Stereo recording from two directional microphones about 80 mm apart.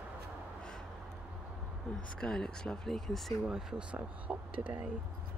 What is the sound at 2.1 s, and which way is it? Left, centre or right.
Speech, centre.